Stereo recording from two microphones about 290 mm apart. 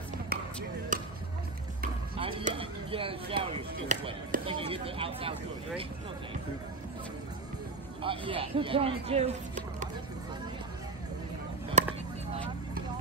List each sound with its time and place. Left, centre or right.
0.3 s basketball bounce: right
2.1 s speech: centre
8.0 s speech: centre
11.8 s a sound: right